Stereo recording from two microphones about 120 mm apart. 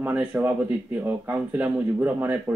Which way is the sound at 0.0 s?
15° right (ahead or behind).